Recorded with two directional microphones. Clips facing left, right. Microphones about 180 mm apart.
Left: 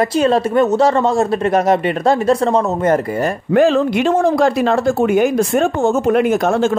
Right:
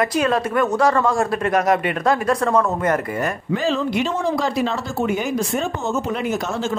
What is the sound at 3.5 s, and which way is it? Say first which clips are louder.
Speech: left 10 dB; 55° left (ahead or behind).